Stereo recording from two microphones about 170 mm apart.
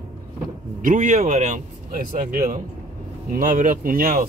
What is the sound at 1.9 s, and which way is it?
Speech, 55° right (ahead or behind).